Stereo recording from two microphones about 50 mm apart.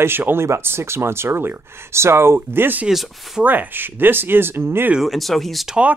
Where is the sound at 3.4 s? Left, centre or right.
Right.